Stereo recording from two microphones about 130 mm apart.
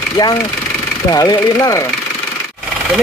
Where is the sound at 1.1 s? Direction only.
30° left (ahead or behind).